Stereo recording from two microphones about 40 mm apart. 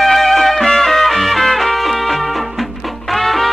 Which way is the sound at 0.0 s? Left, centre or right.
Centre.